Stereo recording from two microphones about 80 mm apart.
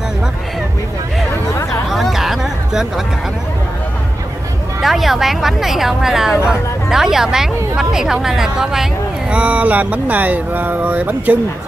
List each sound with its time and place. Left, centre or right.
1.9 s a sound: centre
4.8 s speech: centre
9.3 s speech: centre